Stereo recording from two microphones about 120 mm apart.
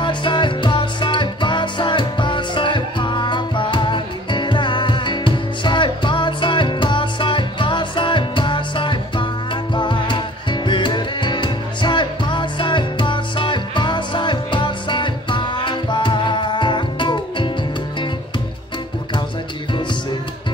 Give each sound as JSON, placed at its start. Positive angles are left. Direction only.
{"t": 0.0, "sound": "music", "side_deg": 40}